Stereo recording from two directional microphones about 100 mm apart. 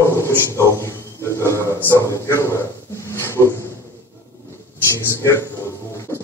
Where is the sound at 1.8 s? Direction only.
25° left (ahead or behind).